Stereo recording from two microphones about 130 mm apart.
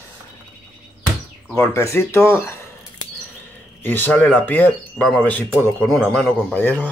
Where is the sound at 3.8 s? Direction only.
15° left (ahead or behind).